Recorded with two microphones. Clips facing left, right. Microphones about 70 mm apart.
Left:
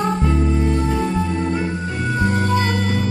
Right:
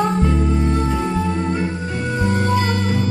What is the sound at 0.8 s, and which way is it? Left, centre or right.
Music, centre.